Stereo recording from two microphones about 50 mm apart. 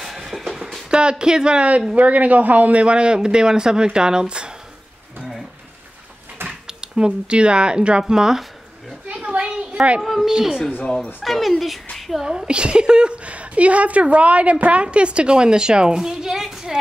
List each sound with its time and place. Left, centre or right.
0.0 s music: centre
0.8 s a woman's voice: centre
6.7 s speech: centre
9.1 s a sound: right
9.8 s a child's voice: right
11.2 s speech: centre
12.3 s a woman's voice: centre